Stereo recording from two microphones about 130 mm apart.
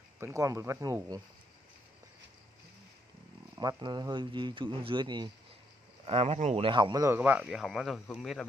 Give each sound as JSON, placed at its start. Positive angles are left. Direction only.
{"t": 0.2, "sound": "speech", "side_deg": -25}
{"t": 3.5, "sound": "speech", "side_deg": -35}
{"t": 6.0, "sound": "speech", "side_deg": -50}
{"t": 7.2, "sound": "speech", "side_deg": -10}